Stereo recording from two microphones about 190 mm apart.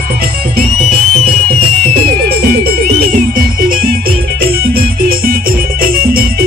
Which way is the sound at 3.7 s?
50° right (ahead or behind).